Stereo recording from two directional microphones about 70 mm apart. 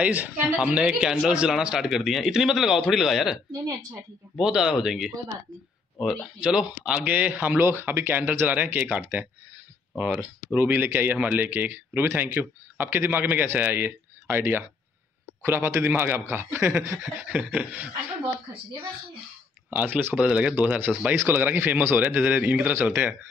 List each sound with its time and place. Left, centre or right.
0.0 s speech: right
0.7 s speech: centre
4.4 s speech: centre
6.2 s a man's voice: centre; by 16.8 s right
16.8 s a sound: right
17.2 s speech: right
19.7 s speech: right
20.2 s speech: centre